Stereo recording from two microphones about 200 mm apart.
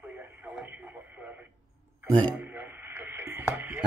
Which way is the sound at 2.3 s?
10° right (ahead or behind).